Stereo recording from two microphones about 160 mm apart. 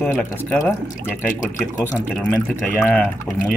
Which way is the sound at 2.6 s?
10° left (ahead or behind).